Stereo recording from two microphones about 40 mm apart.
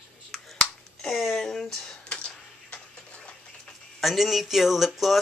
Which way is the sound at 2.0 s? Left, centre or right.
Left.